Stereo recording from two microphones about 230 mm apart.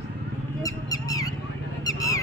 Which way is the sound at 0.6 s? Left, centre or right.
Centre.